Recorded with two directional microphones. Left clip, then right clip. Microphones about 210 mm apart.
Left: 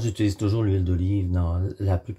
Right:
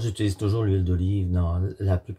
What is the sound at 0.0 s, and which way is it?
Speech, 15° left (ahead or behind).